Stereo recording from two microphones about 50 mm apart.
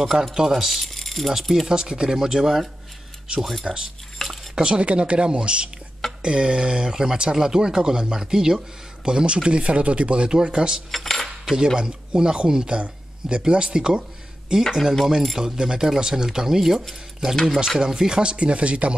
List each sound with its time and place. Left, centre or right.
0.0 s speech: centre
3.7 s speech: centre
4.2 s cutlery: centre
4.6 s speech: centre
10.9 s cutlery: centre
11.5 s speech: centre